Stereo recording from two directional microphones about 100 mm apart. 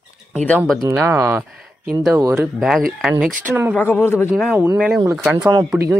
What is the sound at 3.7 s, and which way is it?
Speech, 20° left (ahead or behind).